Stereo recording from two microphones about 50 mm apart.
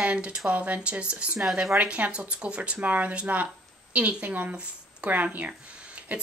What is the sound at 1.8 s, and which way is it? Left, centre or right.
Speech, right.